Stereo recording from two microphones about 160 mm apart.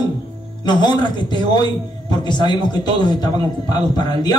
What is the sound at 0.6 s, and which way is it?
A man's voice, 25° left (ahead or behind).